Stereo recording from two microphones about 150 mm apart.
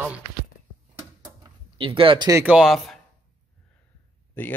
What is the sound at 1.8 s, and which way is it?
Speech, 35° right (ahead or behind).